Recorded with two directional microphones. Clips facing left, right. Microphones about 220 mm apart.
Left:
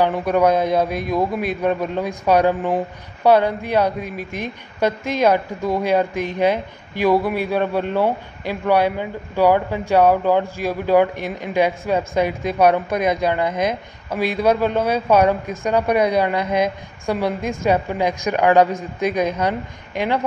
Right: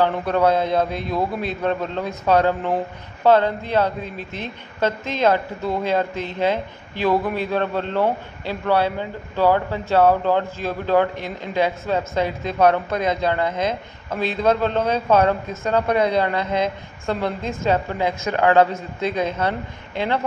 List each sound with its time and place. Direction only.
0.0 s a woman's voice: 15° left (ahead or behind)